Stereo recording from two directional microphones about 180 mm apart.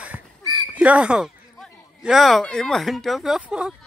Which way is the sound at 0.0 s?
5° right (ahead or behind).